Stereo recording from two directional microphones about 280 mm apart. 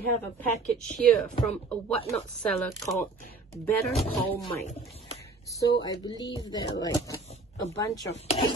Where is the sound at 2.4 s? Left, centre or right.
Centre.